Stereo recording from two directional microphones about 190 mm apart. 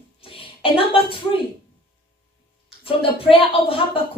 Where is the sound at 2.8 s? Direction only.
30° left (ahead or behind).